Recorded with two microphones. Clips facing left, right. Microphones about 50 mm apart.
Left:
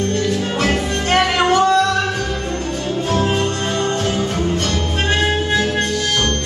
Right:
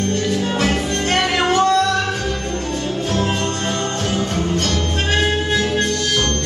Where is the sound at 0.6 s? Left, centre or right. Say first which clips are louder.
Left 1 dB; centre.